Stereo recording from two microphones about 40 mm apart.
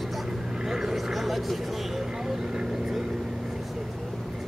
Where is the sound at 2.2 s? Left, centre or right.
Right.